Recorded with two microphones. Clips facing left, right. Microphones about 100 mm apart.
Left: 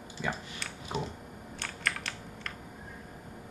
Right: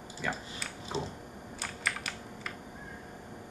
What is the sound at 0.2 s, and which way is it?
Speech, 10° left (ahead or behind).